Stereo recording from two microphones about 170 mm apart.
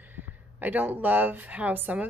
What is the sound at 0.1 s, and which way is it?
Speech, 10° right (ahead or behind).